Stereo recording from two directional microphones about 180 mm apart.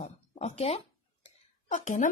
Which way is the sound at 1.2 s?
45° left (ahead or behind).